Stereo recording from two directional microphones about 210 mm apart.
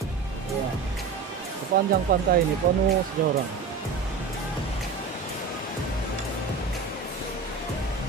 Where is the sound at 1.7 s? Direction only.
45° right (ahead or behind).